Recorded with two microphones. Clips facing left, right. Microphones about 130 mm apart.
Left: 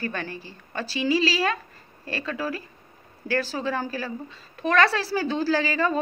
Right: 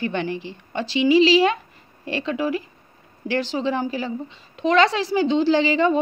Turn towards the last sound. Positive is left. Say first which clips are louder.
# right 5 dB
turn(degrees=-25)  # may be behind; listen again after turning